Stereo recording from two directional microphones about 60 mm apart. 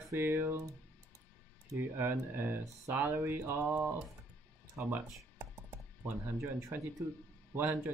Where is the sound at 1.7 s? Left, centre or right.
Right.